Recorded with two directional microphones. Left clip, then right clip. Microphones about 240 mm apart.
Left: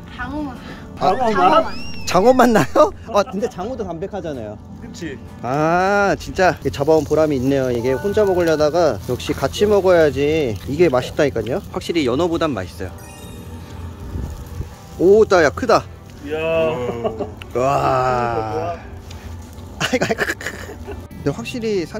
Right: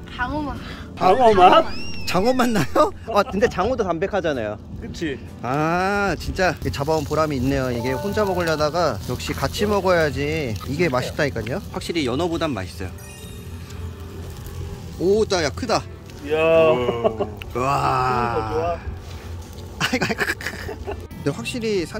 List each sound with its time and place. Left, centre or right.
0.2 s speech: centre
1.8 s speech: centre
3.3 s speech: centre
5.0 s speech: right
5.4 s speech: centre
15.0 s speech: centre
16.3 s speech: right
17.5 s speech: centre
19.8 s a sound: centre
21.2 s speech: centre